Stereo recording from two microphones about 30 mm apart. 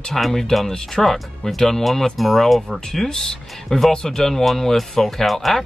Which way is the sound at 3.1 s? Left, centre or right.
Centre.